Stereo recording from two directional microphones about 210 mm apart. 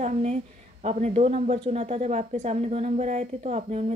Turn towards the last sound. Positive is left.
turn(degrees=-30)  # may be behind; listen again after turning